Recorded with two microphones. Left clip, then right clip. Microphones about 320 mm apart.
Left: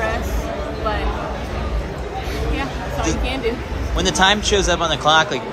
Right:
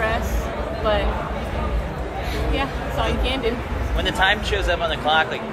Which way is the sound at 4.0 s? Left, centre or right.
Centre.